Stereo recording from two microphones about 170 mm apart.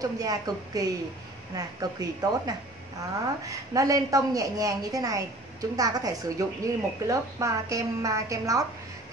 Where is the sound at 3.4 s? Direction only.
20° right (ahead or behind).